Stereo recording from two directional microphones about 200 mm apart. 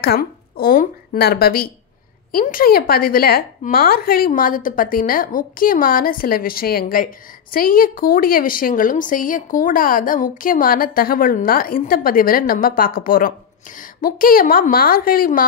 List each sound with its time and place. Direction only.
0.0 s a woman's voice: 50° left (ahead or behind)